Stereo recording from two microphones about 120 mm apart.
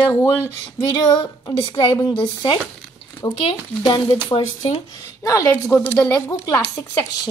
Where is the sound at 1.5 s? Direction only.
35° left (ahead or behind).